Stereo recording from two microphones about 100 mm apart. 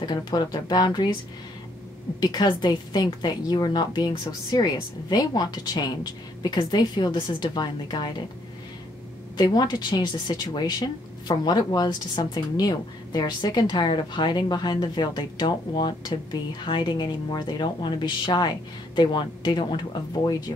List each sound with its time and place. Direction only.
0.0 s speech: 50° left (ahead or behind)
2.1 s speech: 45° left (ahead or behind)
9.4 s speech: 45° left (ahead or behind)